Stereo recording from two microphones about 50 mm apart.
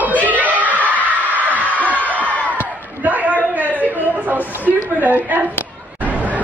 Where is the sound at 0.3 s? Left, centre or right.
Right.